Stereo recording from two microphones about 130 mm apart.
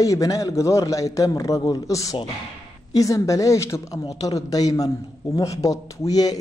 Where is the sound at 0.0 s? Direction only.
25° left (ahead or behind).